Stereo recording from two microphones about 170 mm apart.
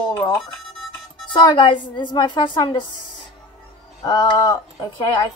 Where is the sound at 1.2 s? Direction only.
30° left (ahead or behind).